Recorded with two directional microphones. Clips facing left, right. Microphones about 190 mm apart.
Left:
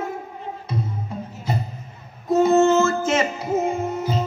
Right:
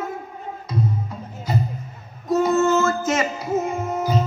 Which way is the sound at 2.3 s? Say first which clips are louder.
Left 2 dB; 25° left (ahead or behind).